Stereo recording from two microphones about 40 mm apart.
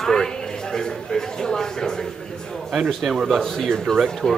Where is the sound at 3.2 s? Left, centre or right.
Centre.